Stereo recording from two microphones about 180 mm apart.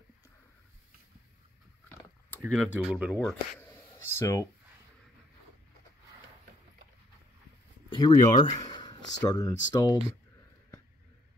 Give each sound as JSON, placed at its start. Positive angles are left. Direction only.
{"t": 1.9, "sound": "speech", "side_deg": 10}
{"t": 3.5, "sound": "a sound", "side_deg": 10}
{"t": 7.9, "sound": "speech", "side_deg": 25}